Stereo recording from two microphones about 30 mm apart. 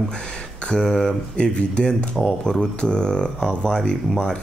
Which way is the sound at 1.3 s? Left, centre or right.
Left.